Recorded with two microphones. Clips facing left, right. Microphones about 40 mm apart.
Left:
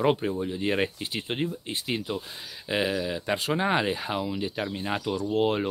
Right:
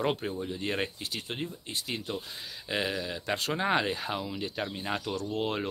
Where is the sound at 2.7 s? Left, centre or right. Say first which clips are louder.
Left 5 dB; centre.